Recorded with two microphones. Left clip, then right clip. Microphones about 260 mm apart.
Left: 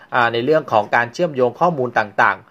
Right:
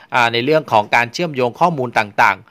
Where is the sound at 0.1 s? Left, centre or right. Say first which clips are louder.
Right 1 dB; right.